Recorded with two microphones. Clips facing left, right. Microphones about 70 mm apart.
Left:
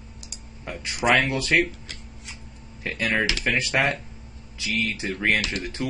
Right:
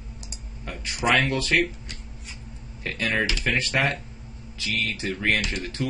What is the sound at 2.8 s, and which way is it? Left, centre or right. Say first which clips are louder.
Speech: left 1 dB; centre.